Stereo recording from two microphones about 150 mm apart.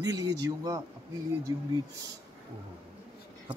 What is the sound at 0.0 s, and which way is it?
Speech, 25° right (ahead or behind).